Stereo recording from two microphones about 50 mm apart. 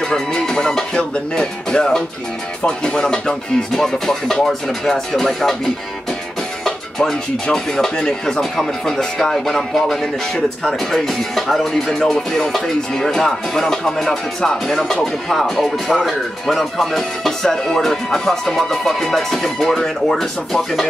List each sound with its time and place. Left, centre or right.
0.0 s speech: centre
7.5 s speech: centre
10.3 s speech: centre
10.9 s speech: centre